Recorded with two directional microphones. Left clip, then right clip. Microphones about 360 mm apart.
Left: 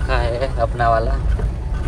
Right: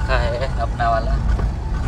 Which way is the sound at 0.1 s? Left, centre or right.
Centre.